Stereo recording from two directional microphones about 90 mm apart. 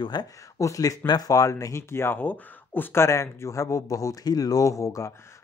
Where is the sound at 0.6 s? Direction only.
40° left (ahead or behind).